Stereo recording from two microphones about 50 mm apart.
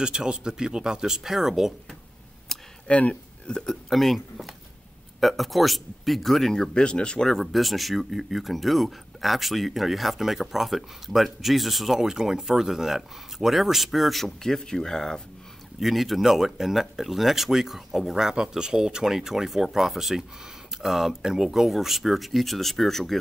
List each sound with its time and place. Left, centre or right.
0.0 s speech: centre
2.5 s a sound: centre
2.9 s a sound: left
3.5 s speech: centre
7.2 s speech: centre
15.8 s speech: centre